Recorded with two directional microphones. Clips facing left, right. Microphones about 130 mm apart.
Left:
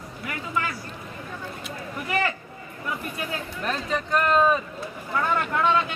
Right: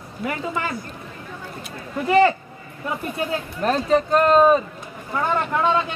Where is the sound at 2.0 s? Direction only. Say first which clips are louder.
Right 11 dB; 30° right (ahead or behind).